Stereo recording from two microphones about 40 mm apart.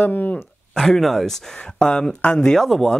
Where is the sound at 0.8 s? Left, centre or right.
Centre.